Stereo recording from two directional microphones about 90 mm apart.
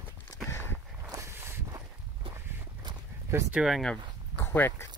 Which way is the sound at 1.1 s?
30° right (ahead or behind).